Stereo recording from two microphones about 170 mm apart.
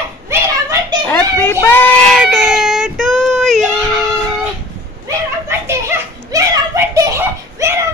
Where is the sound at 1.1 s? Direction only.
15° left (ahead or behind).